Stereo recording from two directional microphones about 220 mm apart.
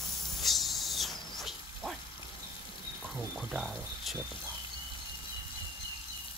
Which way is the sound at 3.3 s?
Centre (ahead or behind).